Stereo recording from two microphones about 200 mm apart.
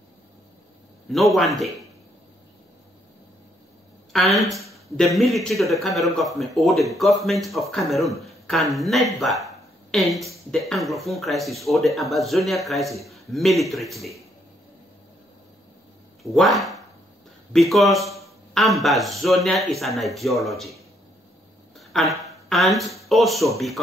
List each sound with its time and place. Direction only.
1.1 s speech: centre (ahead or behind)
4.1 s a woman's voice: centre (ahead or behind)
16.2 s speech: centre (ahead or behind)
21.7 s speech: centre (ahead or behind)